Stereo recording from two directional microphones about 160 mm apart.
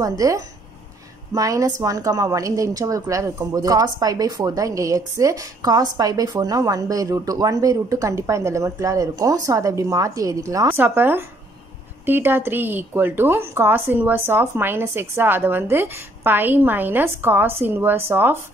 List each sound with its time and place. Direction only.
0.2 s a woman's voice: 20° right (ahead or behind)